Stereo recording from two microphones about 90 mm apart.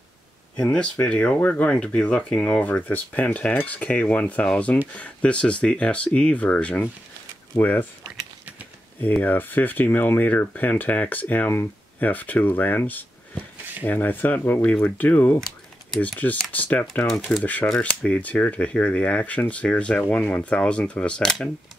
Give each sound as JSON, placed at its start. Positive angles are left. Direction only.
{"t": 0.6, "sound": "speech", "side_deg": 10}
{"t": 9.0, "sound": "speech", "side_deg": 20}